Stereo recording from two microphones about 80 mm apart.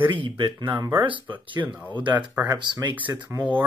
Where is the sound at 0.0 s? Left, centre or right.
Right.